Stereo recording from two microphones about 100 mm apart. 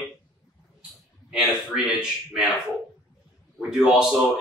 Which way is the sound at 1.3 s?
10° right (ahead or behind).